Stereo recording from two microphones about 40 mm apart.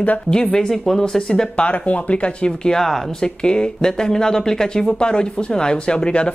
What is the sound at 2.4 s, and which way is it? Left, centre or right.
Speech, centre.